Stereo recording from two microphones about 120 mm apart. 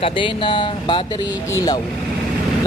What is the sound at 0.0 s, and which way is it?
Speech, 45° left (ahead or behind).